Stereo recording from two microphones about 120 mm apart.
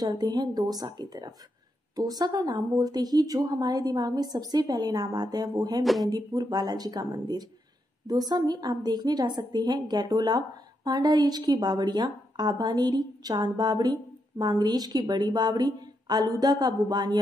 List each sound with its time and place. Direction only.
0.0 s a woman's voice: 35° right (ahead or behind)